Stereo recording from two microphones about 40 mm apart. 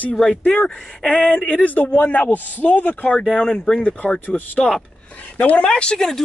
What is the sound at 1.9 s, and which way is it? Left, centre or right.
A man's voice, left.